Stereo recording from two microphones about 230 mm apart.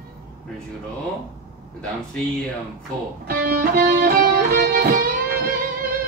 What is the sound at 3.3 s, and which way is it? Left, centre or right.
Music, right.